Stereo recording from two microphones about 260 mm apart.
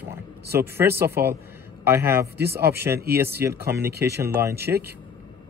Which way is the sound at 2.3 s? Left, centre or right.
Right.